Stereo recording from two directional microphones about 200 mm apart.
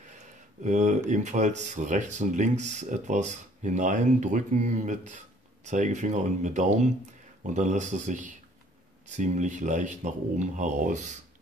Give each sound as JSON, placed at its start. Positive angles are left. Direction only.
{"t": 0.7, "sound": "speech", "side_deg": -35}